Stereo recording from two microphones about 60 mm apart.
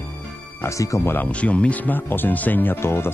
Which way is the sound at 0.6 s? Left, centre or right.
Left.